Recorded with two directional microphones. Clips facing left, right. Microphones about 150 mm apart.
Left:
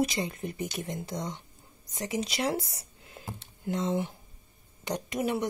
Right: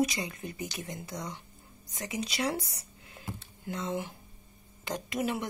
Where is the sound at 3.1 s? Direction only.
45° left (ahead or behind).